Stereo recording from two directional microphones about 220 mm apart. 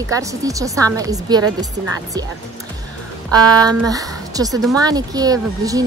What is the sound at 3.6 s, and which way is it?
A woman's voice, 15° right (ahead or behind).